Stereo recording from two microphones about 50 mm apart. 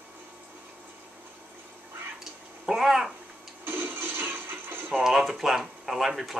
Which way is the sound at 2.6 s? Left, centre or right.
Centre.